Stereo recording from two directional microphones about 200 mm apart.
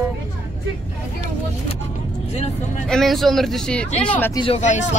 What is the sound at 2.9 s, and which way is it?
A woman's voice, centre (ahead or behind).